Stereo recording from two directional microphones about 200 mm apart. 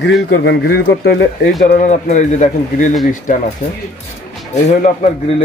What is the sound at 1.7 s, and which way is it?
A man's voice, 35° left (ahead or behind).